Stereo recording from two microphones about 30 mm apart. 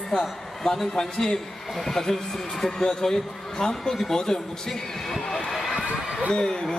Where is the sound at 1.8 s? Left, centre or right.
Centre.